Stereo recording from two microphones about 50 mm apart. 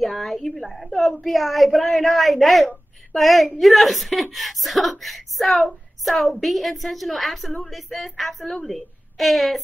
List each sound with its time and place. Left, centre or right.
0.0 s a woman's voice: centre